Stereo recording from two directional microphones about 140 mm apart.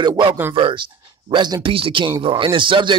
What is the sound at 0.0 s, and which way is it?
Speech, 30° right (ahead or behind).